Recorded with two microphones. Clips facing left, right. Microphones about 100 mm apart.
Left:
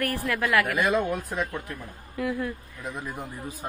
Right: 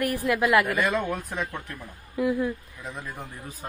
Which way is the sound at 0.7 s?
15° left (ahead or behind).